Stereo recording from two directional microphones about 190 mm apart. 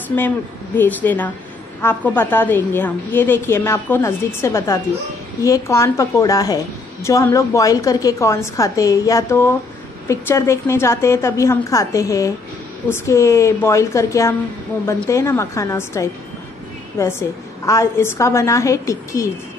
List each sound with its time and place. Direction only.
0.7 s a woman's voice: 10° left (ahead or behind)